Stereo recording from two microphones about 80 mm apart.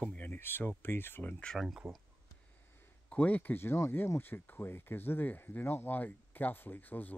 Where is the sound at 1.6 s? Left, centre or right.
Centre.